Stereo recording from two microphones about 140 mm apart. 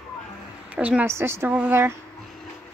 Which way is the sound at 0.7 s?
10° right (ahead or behind).